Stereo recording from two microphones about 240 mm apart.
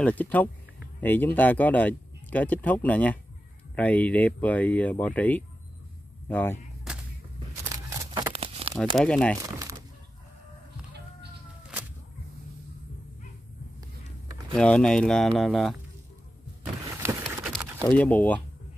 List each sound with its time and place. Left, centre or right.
0.0 s speech: centre
7.7 s crumpling: centre
8.9 s speech: centre
9.4 s a sound: centre
14.5 s speech: centre
17.2 s horse: centre
17.8 s speech: centre